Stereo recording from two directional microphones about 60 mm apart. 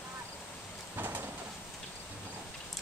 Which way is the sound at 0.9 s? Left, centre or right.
Right.